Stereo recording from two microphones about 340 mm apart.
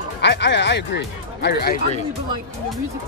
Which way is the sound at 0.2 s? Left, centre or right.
Left.